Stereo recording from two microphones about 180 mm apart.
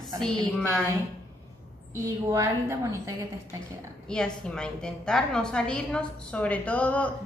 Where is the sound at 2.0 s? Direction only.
15° right (ahead or behind).